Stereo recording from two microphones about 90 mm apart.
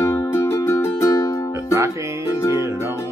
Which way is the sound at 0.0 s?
35° left (ahead or behind).